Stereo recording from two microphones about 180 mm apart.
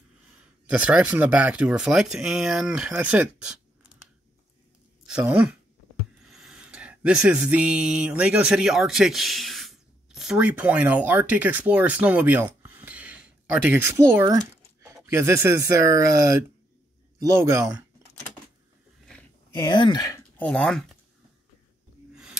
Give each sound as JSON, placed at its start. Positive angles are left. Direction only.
{"t": 0.7, "sound": "speech", "side_deg": -5}
{"t": 5.0, "sound": "speech", "side_deg": -5}
{"t": 19.7, "sound": "speech", "side_deg": 25}
{"t": 22.1, "sound": "a sound", "side_deg": -5}